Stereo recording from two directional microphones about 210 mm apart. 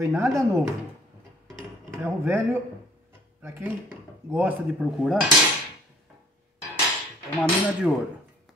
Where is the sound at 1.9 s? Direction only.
10° right (ahead or behind).